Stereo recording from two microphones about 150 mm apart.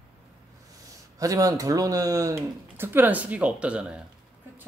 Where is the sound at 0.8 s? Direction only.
20° right (ahead or behind).